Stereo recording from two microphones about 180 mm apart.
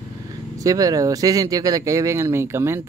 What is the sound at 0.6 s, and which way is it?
Speech, 20° right (ahead or behind).